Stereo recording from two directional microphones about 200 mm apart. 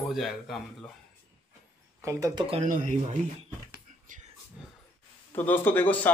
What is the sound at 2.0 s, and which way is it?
Speech, 15° right (ahead or behind).